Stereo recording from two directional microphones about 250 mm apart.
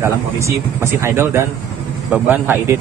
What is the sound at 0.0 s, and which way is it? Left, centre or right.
A man's voice, centre.